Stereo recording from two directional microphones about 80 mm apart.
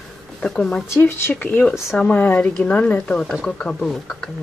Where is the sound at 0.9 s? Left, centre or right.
Left; by 3.9 s centre.